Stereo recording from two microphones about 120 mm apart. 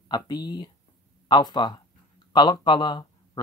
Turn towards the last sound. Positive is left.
turn(degrees=40)  # may be behind; listen again after turning